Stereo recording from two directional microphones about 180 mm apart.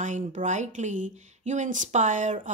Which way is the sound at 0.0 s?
45° right (ahead or behind).